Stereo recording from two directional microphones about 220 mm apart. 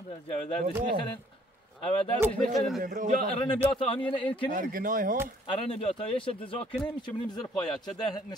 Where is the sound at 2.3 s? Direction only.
Centre (ahead or behind).